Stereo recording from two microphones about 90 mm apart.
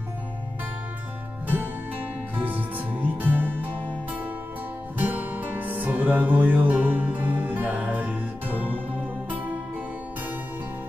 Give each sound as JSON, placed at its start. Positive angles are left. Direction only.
{"t": 3.0, "sound": "music", "side_deg": -20}
{"t": 4.9, "sound": "music", "side_deg": -20}